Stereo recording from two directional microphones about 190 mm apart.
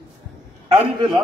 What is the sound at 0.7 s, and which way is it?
Speech, 25° right (ahead or behind).